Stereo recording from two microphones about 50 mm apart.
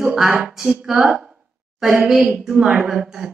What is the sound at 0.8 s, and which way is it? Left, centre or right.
Speech, centre.